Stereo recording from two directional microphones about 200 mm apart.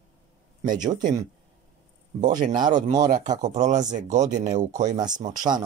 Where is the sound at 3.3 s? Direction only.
35° right (ahead or behind).